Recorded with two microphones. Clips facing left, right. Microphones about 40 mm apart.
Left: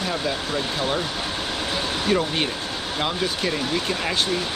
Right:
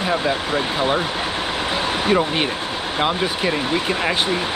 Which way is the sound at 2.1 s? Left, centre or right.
Right.